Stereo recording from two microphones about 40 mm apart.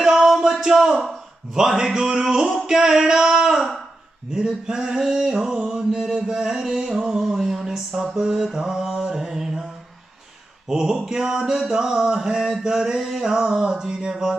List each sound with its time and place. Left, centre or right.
0.0 s music: centre
1.0 s mantra: centre
10.7 s mantra: centre